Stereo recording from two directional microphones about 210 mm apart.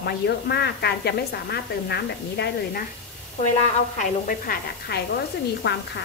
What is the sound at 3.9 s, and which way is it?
A woman's voice, 40° left (ahead or behind).